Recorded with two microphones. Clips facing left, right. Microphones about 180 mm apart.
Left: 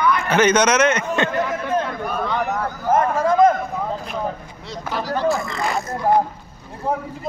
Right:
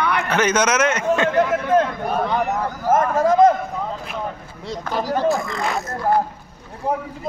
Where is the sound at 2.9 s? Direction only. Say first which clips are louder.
Right 1 dB; 40° right (ahead or behind).